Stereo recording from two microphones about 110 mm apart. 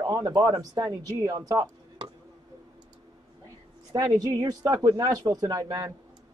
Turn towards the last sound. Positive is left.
turn(degrees=-35)  # may be behind; listen again after turning